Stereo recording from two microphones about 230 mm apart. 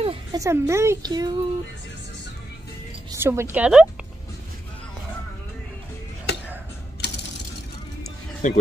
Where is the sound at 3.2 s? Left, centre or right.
Centre.